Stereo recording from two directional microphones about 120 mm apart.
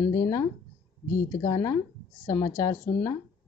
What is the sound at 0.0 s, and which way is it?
Speech, 25° left (ahead or behind).